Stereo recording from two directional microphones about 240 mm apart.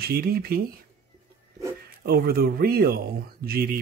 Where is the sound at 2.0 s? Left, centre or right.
Right.